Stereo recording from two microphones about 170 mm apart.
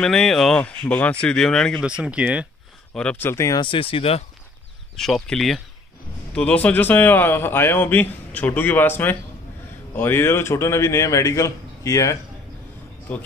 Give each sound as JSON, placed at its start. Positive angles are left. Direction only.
{"t": 0.0, "sound": "speech", "side_deg": 0}
{"t": 2.9, "sound": "speech", "side_deg": 5}
{"t": 4.9, "sound": "speech", "side_deg": 0}